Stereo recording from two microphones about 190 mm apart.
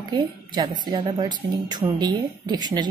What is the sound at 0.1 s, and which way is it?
A woman's voice, 20° right (ahead or behind).